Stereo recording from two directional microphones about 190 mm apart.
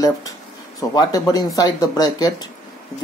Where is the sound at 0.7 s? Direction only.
20° left (ahead or behind).